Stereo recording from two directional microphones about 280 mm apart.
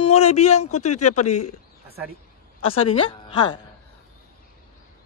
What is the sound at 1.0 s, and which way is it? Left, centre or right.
Speech, left.